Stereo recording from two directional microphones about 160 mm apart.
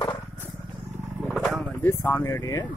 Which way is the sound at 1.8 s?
15° left (ahead or behind).